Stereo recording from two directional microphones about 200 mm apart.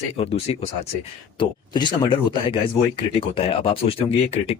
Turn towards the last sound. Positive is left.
turn(degrees=30)  # may be behind; listen again after turning